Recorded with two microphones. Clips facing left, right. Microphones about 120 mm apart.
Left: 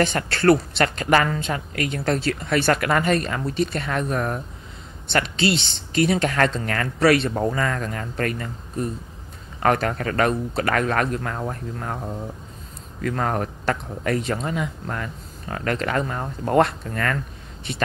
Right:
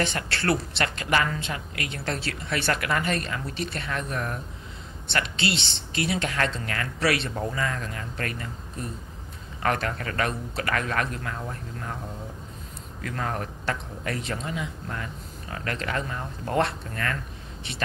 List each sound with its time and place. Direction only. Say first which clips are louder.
0.0 s a woman's voice: left 8 dB; 45° left (ahead or behind)
9.6 s a woman's voice: left 6 dB; 45° left (ahead or behind)
13.0 s a woman's voice: left 7 dB; 50° left (ahead or behind)